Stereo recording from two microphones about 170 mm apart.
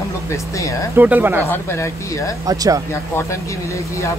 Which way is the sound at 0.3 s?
20° left (ahead or behind).